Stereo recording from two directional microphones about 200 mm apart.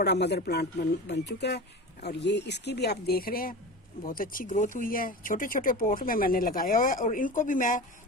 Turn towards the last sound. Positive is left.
turn(degrees=40)  # may be behind; listen again after turning